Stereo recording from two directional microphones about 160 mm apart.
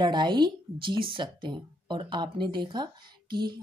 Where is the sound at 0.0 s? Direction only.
30° right (ahead or behind).